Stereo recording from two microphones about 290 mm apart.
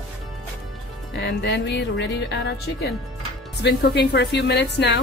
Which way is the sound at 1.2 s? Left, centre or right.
Left.